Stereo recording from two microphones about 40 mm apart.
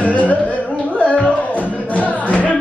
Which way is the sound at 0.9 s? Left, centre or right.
Left.